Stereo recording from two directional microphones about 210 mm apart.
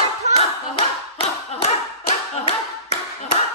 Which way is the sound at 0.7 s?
25° left (ahead or behind).